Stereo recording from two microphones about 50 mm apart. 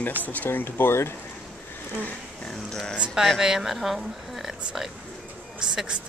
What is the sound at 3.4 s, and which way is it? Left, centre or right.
A woman's voice, centre.